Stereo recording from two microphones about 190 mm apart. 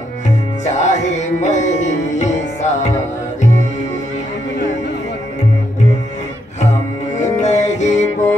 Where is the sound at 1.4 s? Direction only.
40° left (ahead or behind).